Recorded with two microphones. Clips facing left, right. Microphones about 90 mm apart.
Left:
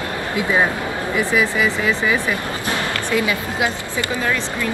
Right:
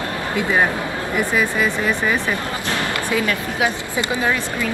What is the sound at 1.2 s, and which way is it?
Speech, 90° left.